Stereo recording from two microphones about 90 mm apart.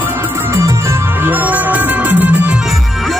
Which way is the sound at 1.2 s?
20° right (ahead or behind).